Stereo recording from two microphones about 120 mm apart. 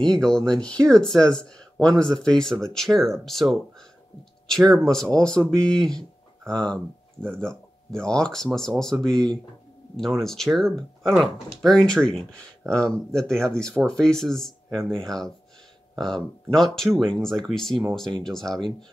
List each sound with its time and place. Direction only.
0.0 s speech: 5° left (ahead or behind)